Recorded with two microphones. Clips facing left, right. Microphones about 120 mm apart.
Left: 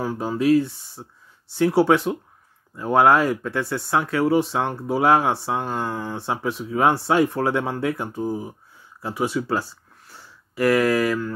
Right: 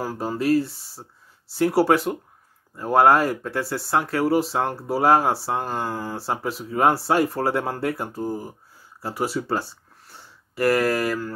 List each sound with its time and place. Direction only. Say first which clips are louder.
0.0 s speech: left 3 dB; centre (ahead or behind)
5.0 s speech: even; 30° right (ahead or behind)
5.3 s speech: left 1 dB; 5° right (ahead or behind)
9.3 s speech: left 1 dB; 25° right (ahead or behind)
10.7 s speech: left 2 dB; 35° right (ahead or behind)